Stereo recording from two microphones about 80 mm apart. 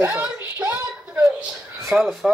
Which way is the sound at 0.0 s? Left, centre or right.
Right.